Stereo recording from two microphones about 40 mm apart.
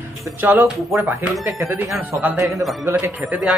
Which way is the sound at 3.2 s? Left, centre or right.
Right.